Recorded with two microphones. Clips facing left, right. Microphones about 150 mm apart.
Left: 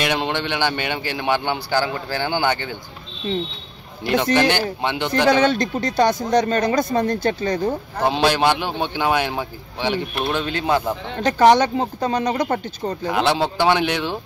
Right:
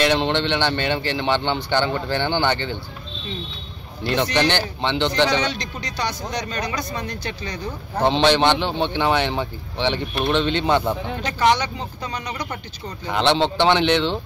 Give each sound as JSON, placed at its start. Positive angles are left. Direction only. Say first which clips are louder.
{"t": 0.0, "sound": "a man's voice", "louder": "right 3 dB", "side_deg": 10}
{"t": 4.0, "sound": "a man's voice", "louder": "left 3 dB", "side_deg": 15}
{"t": 5.3, "sound": "speech", "louder": "left 6 dB", "side_deg": 50}
{"t": 8.0, "sound": "a man's voice", "louder": "right 1 dB", "side_deg": 10}
{"t": 11.2, "sound": "speech", "louder": "left 6 dB", "side_deg": 45}
{"t": 13.1, "sound": "a man's voice", "louder": "right 2 dB", "side_deg": 5}